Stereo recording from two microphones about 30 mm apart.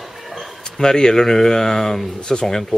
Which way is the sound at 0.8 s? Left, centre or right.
Left.